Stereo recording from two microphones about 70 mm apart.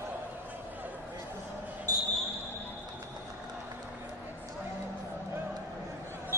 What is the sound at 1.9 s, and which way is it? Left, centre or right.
Basketball bounce, right.